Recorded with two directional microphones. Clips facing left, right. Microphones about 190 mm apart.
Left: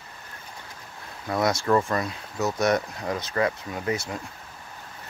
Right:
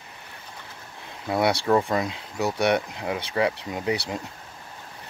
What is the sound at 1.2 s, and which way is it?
Speech, 20° right (ahead or behind).